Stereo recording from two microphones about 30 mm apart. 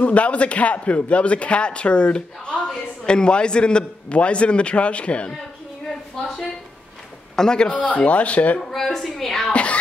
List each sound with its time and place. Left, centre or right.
0.0 s a man's voice: left
7.3 s a man's voice: left
7.7 s a man's voice: left
8.9 s a woman's voice: centre
9.5 s music: left